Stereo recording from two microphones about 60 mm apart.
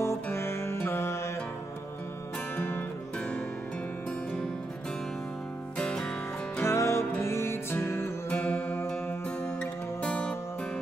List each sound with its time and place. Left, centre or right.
0.0 s music: left
2.5 s music: left
5.8 s music: centre
6.6 s music: left
8.3 s music: left
9.6 s music: centre